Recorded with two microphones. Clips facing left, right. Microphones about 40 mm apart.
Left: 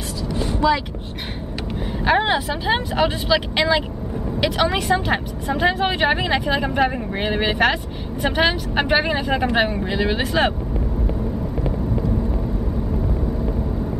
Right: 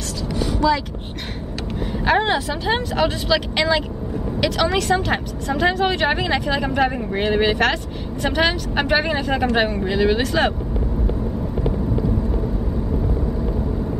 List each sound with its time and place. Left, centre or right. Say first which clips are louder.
0.6 s speech: even; centre
2.0 s speech: even; centre